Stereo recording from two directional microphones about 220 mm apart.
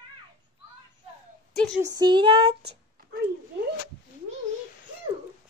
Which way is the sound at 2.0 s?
20° right (ahead or behind).